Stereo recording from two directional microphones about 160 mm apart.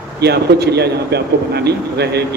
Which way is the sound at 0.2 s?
90° right.